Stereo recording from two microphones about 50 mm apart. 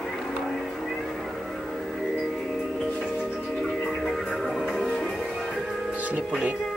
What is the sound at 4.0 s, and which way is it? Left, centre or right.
Music, centre.